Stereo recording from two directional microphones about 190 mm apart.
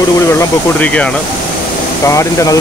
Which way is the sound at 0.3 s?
10° left (ahead or behind).